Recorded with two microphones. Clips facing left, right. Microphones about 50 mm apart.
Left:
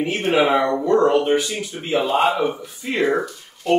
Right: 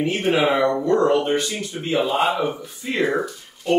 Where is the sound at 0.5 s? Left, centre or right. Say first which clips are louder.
Left 1 dB; centre.